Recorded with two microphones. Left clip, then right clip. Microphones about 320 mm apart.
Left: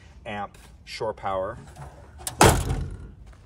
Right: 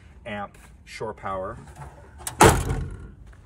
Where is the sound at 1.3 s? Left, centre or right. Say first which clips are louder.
Left 2 dB; centre.